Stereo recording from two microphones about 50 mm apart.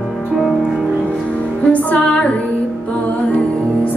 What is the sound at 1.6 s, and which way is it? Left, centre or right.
Music, left.